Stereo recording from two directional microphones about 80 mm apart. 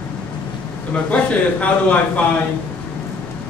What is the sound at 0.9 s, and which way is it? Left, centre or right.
A man's voice, centre.